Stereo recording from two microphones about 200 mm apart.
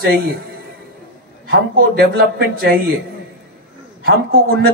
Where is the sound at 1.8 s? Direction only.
50° right (ahead or behind).